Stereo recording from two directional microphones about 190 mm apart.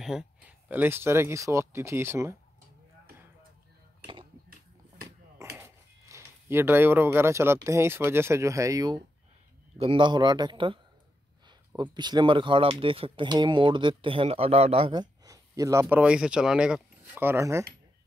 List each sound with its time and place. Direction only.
0.0 s speech: 5° right (ahead or behind)
4.0 s a sound: 25° right (ahead or behind)
5.6 s speech: 15° right (ahead or behind)